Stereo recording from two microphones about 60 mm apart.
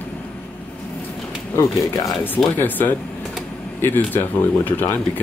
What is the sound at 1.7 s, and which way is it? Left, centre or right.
Speech, left.